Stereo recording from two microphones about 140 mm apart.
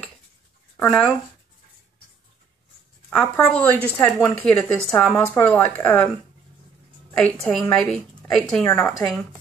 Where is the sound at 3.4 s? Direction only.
10° left (ahead or behind).